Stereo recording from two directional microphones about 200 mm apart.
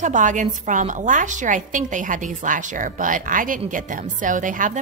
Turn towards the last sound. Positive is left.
turn(degrees=-40)  # may be behind; listen again after turning